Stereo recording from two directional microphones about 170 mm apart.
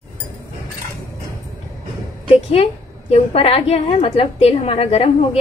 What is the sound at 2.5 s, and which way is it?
A woman's voice, 35° left (ahead or behind).